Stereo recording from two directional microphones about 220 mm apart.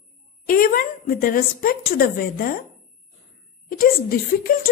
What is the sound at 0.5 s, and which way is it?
Speech, 40° left (ahead or behind).